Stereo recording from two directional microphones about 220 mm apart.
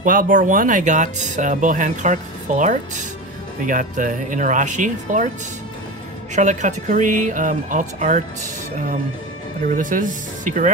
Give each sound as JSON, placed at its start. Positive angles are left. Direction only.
{"t": 0.0, "sound": "speech", "side_deg": -40}
{"t": 6.3, "sound": "speech", "side_deg": -35}
{"t": 9.8, "sound": "speech", "side_deg": -35}